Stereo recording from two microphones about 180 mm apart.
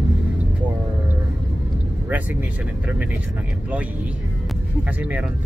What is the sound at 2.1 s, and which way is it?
Speech, 10° right (ahead or behind).